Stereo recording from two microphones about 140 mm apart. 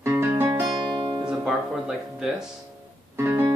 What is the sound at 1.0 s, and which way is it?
Guitar, 35° right (ahead or behind).